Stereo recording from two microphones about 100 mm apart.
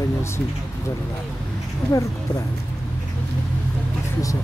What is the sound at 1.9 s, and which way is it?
Speech, 30° left (ahead or behind).